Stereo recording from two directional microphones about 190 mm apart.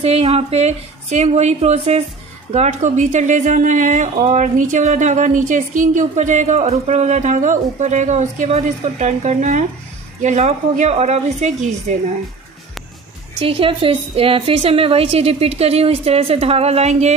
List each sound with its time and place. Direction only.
0.0 s a woman's voice: 30° right (ahead or behind)
13.5 s a woman's voice: 30° right (ahead or behind)